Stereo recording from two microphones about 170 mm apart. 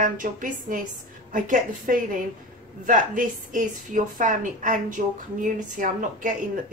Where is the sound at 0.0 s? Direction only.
50° right (ahead or behind).